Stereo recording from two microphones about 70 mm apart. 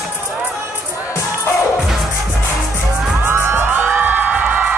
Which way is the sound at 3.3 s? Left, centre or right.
Right.